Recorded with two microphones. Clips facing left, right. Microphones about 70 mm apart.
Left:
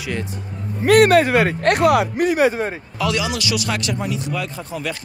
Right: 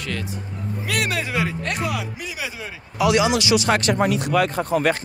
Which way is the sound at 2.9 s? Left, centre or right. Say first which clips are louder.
Right 6 dB; centre.